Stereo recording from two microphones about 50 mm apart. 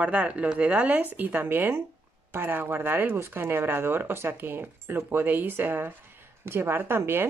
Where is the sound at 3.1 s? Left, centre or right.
Right.